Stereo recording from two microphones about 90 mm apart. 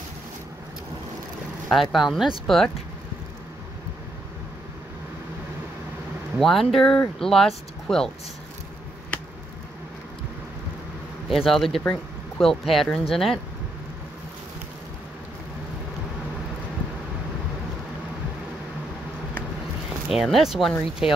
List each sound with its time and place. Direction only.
1.7 s speech: centre (ahead or behind)
6.4 s speech: centre (ahead or behind)
11.2 s speech: centre (ahead or behind)
20.1 s speech: centre (ahead or behind)